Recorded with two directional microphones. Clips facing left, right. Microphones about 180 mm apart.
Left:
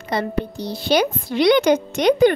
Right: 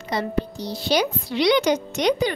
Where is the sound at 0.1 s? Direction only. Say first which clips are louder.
Left 2 dB; 55° left (ahead or behind).